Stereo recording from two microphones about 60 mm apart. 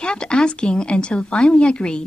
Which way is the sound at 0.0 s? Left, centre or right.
Centre.